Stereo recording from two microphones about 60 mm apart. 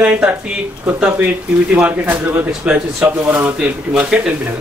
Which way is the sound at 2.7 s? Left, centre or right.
Centre.